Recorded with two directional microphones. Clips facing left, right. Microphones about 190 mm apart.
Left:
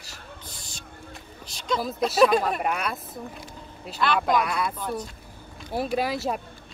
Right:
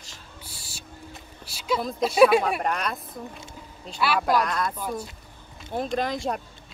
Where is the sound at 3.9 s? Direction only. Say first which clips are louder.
Even; 5° right (ahead or behind).